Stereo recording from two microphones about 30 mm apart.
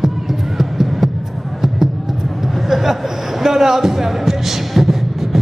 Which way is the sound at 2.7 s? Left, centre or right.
Centre.